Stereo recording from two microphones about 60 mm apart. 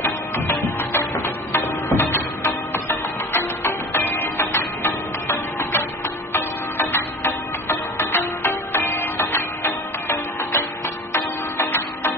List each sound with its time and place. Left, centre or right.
0.0 s music: left
3.3 s music: left